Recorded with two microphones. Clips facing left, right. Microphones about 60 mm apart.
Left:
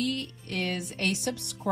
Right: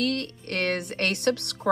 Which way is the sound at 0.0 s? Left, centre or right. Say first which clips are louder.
Right 4 dB; right.